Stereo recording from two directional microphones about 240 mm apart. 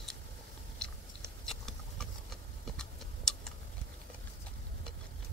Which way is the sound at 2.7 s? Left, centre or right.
Centre.